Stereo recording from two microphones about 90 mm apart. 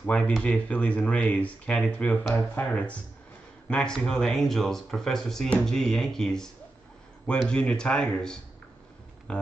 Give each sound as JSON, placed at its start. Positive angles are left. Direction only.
{"t": 0.0, "sound": "speech", "side_deg": 15}